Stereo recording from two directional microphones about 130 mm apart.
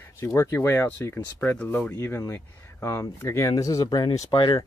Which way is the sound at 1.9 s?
20° left (ahead or behind).